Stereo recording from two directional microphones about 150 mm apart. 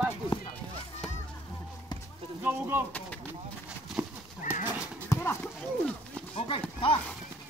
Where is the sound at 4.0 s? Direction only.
10° right (ahead or behind).